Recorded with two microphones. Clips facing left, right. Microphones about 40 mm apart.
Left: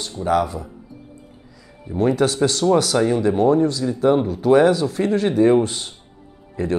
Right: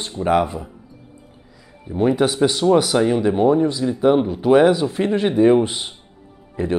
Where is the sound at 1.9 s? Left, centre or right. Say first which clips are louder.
Right 1 dB; centre.